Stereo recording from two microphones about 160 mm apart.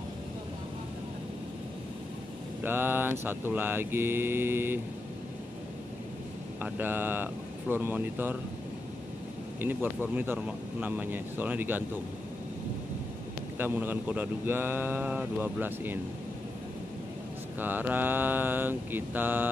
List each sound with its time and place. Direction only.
2.6 s speech: 15° right (ahead or behind)
6.6 s speech: 10° right (ahead or behind)
9.6 s speech: 10° right (ahead or behind)
13.6 s speech: 10° right (ahead or behind)
17.6 s speech: 10° right (ahead or behind)